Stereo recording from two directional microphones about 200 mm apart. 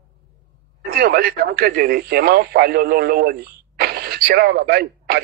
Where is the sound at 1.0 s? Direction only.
50° right (ahead or behind).